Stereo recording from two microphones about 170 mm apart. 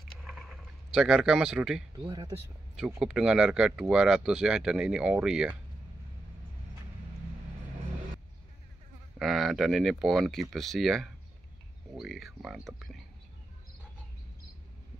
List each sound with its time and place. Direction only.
0.1 s a sound: centre (ahead or behind)
2.0 s speech: 25° right (ahead or behind)
3.0 s speech: 5° right (ahead or behind)
9.2 s speech: centre (ahead or behind)